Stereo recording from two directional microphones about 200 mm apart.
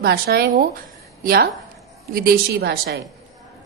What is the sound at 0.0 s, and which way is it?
A woman's voice, 55° right (ahead or behind).